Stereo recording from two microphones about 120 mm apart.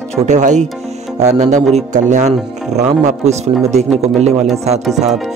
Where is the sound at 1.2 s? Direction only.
75° right (ahead or behind).